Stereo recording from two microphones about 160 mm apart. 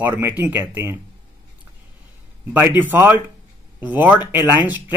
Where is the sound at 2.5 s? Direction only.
10° right (ahead or behind).